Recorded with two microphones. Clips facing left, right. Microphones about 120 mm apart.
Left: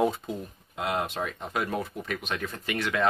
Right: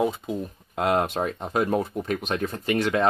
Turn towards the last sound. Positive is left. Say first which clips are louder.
# right 6 dB
turn(degrees=-30)  # may be behind; listen again after turning